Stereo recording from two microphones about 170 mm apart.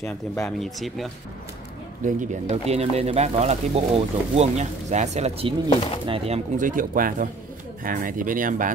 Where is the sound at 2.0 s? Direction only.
45° right (ahead or behind).